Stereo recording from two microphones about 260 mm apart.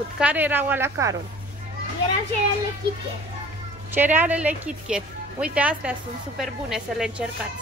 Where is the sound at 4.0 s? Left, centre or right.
Centre.